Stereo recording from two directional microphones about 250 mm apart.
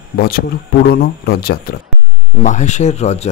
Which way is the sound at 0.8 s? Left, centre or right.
Left.